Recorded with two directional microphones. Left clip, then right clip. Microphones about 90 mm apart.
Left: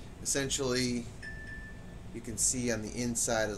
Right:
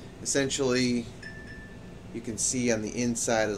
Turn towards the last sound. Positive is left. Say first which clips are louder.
# right 5 dB
turn(degrees=-15)  # may be behind; listen again after turning